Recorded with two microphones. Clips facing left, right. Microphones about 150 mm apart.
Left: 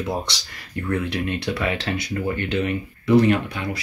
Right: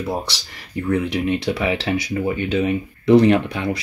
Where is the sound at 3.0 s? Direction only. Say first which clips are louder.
Right 4 dB; 30° right (ahead or behind).